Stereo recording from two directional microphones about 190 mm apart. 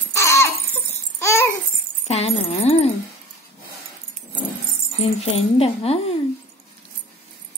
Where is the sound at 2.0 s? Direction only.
35° left (ahead or behind).